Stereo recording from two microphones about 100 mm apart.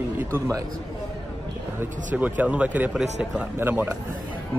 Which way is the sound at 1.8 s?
15° right (ahead or behind).